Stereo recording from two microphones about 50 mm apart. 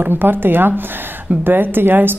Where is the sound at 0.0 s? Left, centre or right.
Right.